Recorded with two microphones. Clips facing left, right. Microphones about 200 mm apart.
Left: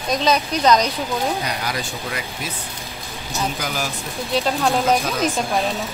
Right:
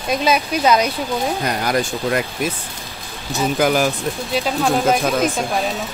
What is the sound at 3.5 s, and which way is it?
Speech, 55° right (ahead or behind).